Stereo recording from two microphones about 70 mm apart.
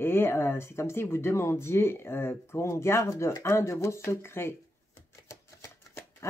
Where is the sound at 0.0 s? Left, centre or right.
Left.